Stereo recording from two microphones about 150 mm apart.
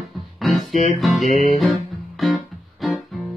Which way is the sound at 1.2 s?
50° left (ahead or behind).